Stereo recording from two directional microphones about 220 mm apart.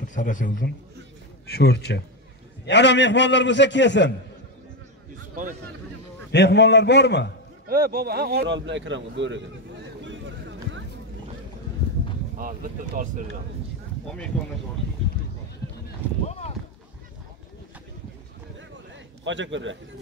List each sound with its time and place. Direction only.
0.0 s a man's voice: 35° left (ahead or behind)
1.5 s a man's voice: 45° left (ahead or behind)
6.3 s a man's voice: 50° left (ahead or behind)
7.6 s speech: 40° right (ahead or behind)
12.4 s speech: 40° right (ahead or behind)
14.0 s speech: 5° left (ahead or behind)
16.3 s a sound: 30° left (ahead or behind)
19.2 s a man's voice: 55° right (ahead or behind)